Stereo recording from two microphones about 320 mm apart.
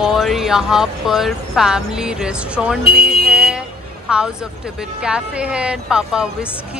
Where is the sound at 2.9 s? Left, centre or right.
Right.